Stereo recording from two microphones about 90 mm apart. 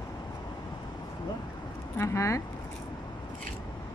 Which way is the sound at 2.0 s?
35° left (ahead or behind).